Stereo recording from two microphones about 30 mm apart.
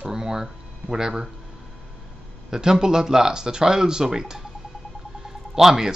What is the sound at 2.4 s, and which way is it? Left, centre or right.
Speech, right.